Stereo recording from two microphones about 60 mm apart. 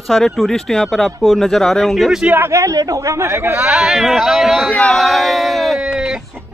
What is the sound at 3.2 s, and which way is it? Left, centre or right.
Speech, right.